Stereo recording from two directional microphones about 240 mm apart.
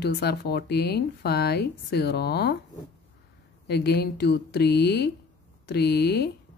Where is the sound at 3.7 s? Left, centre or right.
Left.